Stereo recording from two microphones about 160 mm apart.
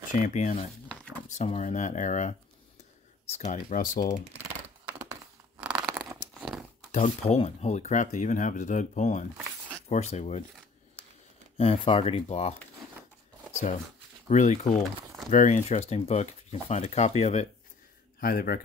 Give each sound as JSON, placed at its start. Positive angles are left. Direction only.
{"t": 0.1, "sound": "speech", "side_deg": 50}
{"t": 5.6, "sound": "a sound", "side_deg": -5}
{"t": 6.9, "sound": "speech", "side_deg": 45}
{"t": 11.5, "sound": "speech", "side_deg": 35}
{"t": 14.3, "sound": "speech", "side_deg": 45}
{"t": 18.2, "sound": "speech", "side_deg": 70}